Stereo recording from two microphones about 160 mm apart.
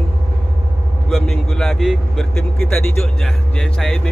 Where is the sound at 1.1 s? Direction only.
5° left (ahead or behind).